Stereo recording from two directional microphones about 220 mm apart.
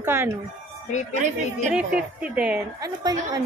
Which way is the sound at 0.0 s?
10° right (ahead or behind).